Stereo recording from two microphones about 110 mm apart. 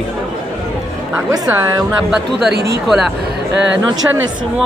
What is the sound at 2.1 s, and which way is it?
A man's voice, 5° right (ahead or behind).